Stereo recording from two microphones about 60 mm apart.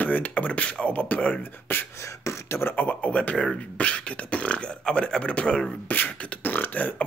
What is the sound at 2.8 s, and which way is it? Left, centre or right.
Speech, left.